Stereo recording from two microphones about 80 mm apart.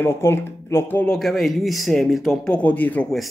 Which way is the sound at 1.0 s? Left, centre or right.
Centre.